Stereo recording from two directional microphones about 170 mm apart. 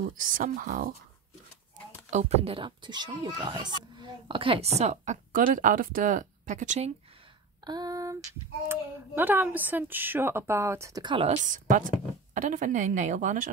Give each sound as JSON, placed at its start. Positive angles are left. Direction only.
{"t": 0.2, "sound": "a woman's voice", "side_deg": -55}
{"t": 2.0, "sound": "speech", "side_deg": -40}
{"t": 7.6, "sound": "female singing", "side_deg": -25}
{"t": 8.6, "sound": "a woman's voice", "side_deg": -10}
{"t": 11.2, "sound": "a woman's voice", "side_deg": -45}